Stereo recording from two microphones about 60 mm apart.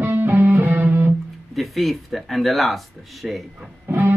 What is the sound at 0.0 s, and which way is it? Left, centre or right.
Music, right.